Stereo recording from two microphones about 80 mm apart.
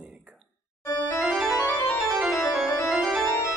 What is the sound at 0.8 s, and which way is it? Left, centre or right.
Music, left.